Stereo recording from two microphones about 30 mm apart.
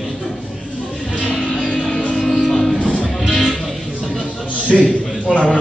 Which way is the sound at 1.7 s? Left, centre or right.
Centre.